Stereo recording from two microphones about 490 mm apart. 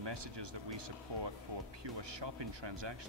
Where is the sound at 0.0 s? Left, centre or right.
Right.